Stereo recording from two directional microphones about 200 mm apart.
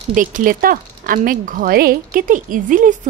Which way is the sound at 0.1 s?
40° right (ahead or behind).